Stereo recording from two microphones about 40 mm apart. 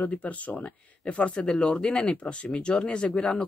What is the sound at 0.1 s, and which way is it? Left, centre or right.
Speech, left.